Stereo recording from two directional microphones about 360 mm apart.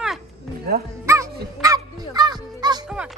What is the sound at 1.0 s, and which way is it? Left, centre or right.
Music, centre.